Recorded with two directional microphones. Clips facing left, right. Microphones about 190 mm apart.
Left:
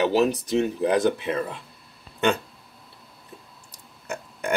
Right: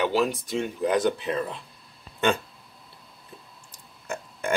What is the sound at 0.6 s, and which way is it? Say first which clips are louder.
Speech: left 3 dB; 20° left (ahead or behind).